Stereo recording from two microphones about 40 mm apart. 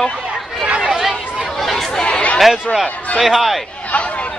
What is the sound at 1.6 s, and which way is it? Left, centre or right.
Chatter, centre.